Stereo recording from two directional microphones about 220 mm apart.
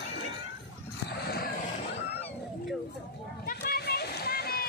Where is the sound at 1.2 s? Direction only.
45° left (ahead or behind).